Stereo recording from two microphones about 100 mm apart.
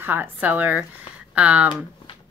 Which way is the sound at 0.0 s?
20° right (ahead or behind).